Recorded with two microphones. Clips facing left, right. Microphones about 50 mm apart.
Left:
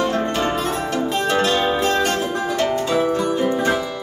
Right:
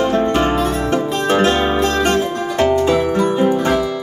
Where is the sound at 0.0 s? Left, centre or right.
Right.